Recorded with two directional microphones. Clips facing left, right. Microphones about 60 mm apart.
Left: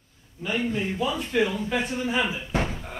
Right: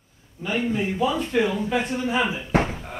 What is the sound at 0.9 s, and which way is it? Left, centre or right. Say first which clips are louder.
A man's voice: right 2 dB; centre.